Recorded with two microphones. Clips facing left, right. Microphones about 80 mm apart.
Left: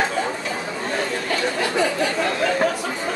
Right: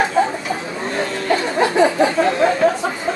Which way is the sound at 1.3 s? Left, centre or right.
Right.